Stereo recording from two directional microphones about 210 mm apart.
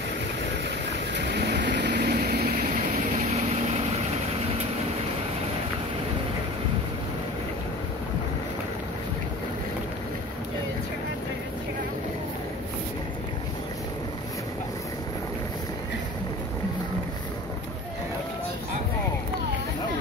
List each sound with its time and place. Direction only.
1.1 s vehicle: 55° right (ahead or behind)